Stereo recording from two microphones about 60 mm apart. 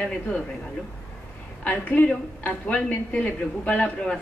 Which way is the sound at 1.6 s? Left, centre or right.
Left.